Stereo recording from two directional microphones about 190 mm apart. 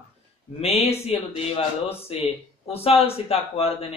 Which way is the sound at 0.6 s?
35° left (ahead or behind).